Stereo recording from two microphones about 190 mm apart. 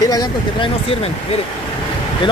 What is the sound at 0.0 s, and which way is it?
Speech, 20° left (ahead or behind).